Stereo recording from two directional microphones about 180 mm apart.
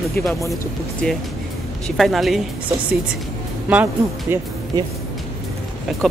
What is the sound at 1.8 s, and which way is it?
Speech, centre (ahead or behind).